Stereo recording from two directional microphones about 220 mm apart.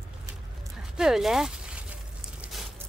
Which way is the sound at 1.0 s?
Centre (ahead or behind).